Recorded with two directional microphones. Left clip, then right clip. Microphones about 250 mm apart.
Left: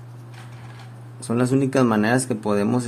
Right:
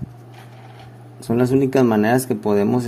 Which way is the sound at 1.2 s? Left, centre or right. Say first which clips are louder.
Right 4 dB; centre.